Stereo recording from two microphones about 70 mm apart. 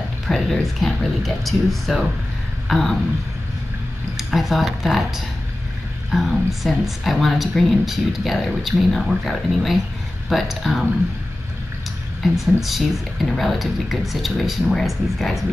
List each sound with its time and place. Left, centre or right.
0.3 s speech: centre
4.2 s speech: centre
12.2 s speech: centre